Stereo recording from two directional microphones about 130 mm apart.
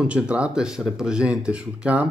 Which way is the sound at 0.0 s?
10° right (ahead or behind).